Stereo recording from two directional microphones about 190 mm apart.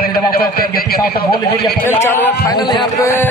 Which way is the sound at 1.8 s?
10° left (ahead or behind).